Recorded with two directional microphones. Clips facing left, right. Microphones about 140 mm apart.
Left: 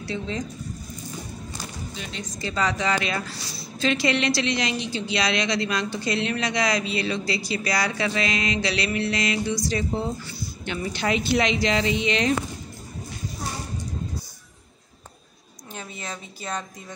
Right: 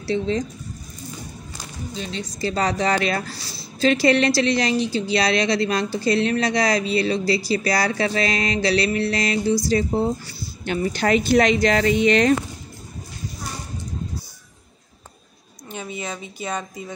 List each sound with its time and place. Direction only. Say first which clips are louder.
0.0 s speech: right 7 dB; 35° right (ahead or behind)
2.0 s a woman's voice: right 8 dB; 35° right (ahead or behind); by 12.4 s 50° right (ahead or behind)
15.7 s a woman's voice: right 5 dB; 5° right (ahead or behind)